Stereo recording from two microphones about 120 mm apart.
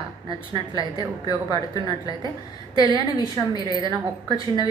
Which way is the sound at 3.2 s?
35° right (ahead or behind).